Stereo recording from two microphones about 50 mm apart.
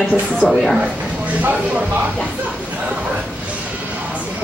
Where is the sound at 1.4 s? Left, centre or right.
Right.